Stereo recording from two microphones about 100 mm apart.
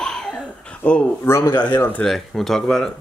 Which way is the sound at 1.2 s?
25° left (ahead or behind).